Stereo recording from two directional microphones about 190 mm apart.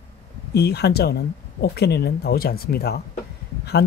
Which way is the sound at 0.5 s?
60° left (ahead or behind).